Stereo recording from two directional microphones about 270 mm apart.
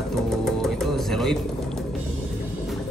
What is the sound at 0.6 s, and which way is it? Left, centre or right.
Music, centre.